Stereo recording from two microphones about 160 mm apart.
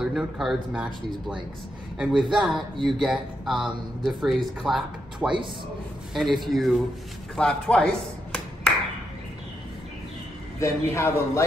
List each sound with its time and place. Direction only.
0.0 s speech: 5° right (ahead or behind)
2.0 s speech: 5° right (ahead or behind)
10.6 s a man's voice: 20° left (ahead or behind)